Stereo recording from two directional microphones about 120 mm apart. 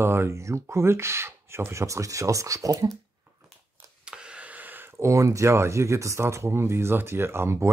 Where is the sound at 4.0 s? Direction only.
10° right (ahead or behind).